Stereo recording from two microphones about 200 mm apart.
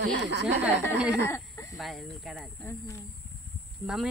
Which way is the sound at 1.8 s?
Centre (ahead or behind).